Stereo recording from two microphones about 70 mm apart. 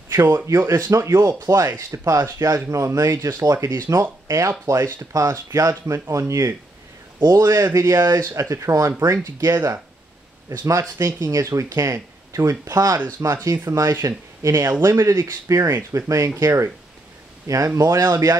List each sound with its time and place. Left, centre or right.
0.1 s speech: right
1.9 s speech: right
13.2 s speech: right
17.7 s speech: right